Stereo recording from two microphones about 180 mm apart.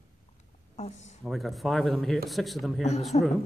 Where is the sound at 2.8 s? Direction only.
40° left (ahead or behind).